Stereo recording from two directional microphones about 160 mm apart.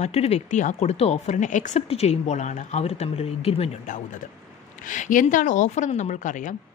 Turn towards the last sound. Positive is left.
turn(degrees=55)  # may be behind; listen again after turning